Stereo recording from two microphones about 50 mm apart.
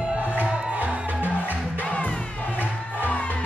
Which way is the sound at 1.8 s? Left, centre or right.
Left.